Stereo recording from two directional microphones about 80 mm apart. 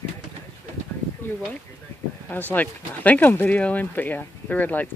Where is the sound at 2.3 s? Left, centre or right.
Left.